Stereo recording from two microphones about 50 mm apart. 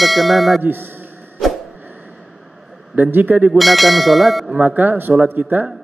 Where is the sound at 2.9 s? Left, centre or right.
Right.